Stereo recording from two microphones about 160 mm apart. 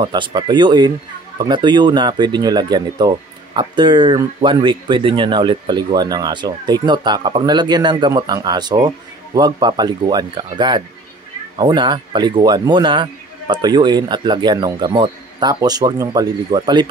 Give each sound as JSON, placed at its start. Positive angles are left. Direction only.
{"t": 0.0, "sound": "speech", "side_deg": -25}